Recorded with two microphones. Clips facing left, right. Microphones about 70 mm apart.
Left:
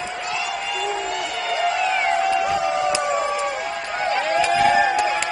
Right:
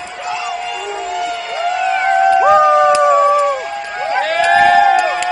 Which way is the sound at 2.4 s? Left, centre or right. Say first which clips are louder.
Right 11 dB; right.